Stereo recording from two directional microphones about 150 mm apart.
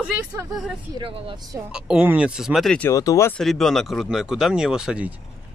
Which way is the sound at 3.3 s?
Centre (ahead or behind).